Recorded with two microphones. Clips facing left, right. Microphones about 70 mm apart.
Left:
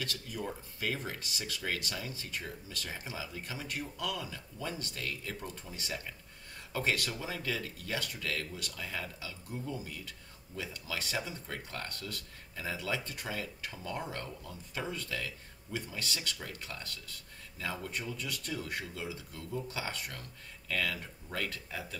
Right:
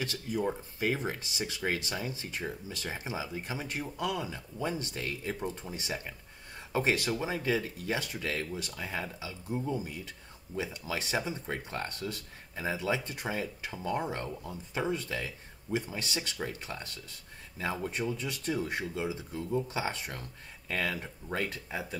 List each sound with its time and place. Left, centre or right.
0.0 s speech: right